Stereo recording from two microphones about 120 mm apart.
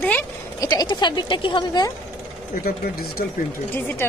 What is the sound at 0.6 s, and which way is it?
Speech, 35° left (ahead or behind).